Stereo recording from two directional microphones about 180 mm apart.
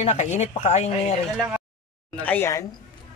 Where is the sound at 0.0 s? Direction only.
40° left (ahead or behind).